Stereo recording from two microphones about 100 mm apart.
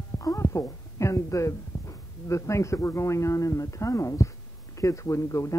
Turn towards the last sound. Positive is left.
turn(degrees=30)  # may be behind; listen again after turning